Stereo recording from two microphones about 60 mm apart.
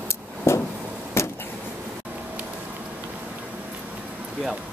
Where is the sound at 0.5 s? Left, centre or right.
Left.